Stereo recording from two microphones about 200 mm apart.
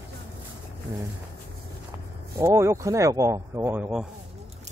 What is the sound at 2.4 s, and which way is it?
Speech, 15° right (ahead or behind).